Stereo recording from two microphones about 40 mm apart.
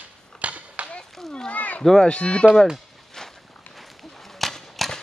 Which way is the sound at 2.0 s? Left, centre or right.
Left.